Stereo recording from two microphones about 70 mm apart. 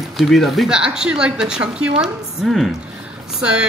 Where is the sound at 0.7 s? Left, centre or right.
Centre.